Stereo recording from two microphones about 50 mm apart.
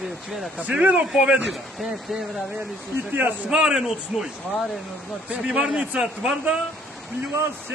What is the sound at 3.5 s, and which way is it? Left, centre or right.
Speech, centre.